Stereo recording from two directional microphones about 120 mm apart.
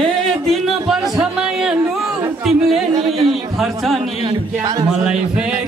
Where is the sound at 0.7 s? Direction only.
5° right (ahead or behind).